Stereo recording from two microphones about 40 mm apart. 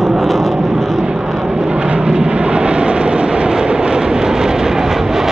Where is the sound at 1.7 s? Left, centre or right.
Right.